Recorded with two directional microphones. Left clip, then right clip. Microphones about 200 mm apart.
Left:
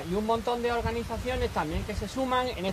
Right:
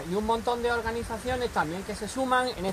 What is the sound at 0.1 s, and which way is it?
Speech, 15° right (ahead or behind).